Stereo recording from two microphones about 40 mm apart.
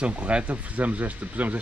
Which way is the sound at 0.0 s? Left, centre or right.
Right.